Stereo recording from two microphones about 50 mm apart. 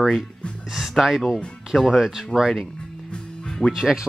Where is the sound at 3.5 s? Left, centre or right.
Centre.